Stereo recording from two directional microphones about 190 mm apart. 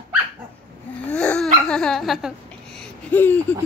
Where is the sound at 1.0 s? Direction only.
5° left (ahead or behind).